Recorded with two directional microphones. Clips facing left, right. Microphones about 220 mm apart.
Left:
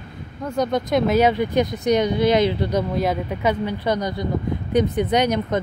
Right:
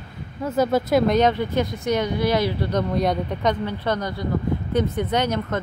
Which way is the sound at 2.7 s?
5° left (ahead or behind).